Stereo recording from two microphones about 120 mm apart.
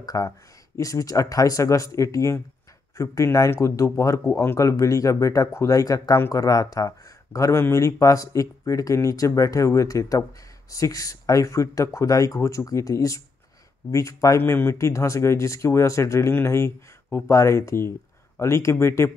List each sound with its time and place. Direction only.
0.0 s speech: 30° left (ahead or behind)